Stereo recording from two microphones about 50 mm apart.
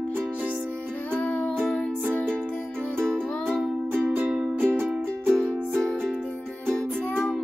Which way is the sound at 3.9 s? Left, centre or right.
Right.